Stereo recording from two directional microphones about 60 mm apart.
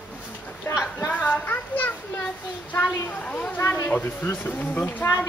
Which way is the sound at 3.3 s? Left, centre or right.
Left.